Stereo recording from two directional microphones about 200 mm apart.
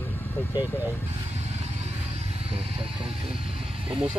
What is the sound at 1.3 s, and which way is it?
Vehicle, 35° right (ahead or behind).